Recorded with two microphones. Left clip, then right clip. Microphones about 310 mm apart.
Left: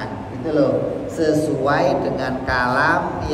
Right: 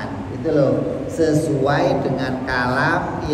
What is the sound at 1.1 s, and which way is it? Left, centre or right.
Speech, centre.